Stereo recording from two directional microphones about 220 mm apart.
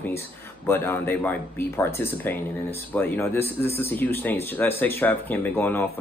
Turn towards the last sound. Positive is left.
turn(degrees=10)  # may be behind; listen again after turning